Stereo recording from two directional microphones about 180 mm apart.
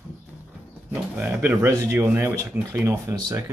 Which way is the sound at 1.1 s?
10° right (ahead or behind).